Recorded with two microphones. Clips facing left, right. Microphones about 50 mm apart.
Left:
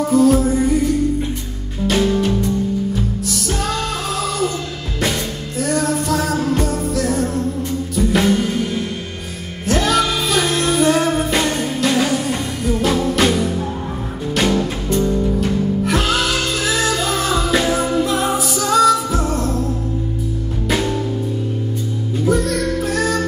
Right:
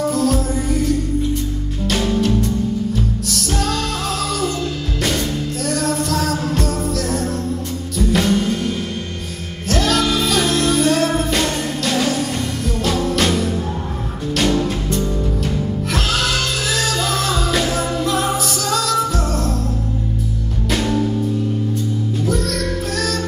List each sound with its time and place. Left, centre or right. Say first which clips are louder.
0.0 s music: left 5 dB; centre
5.7 s music: left 2 dB; centre
20.7 s music: even; centre
22.2 s music: left 6 dB; centre